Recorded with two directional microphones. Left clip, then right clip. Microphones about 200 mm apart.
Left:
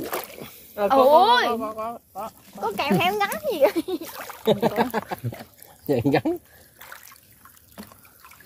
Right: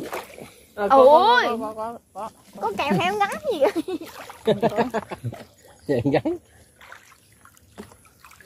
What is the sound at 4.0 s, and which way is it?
Speech, 35° left (ahead or behind).